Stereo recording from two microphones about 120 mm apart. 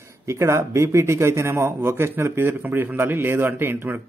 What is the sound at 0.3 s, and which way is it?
A man's voice, 25° right (ahead or behind).